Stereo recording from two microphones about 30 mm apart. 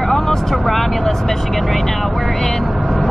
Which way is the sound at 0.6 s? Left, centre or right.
Centre.